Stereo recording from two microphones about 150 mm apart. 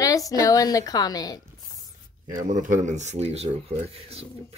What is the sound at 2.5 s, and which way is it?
Speech, 55° right (ahead or behind).